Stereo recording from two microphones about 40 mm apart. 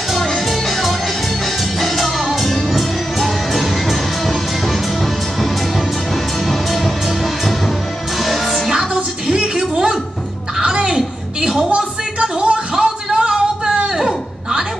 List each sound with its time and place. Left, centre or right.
0.1 s music: centre
9.3 s music: centre
11.7 s a sound: right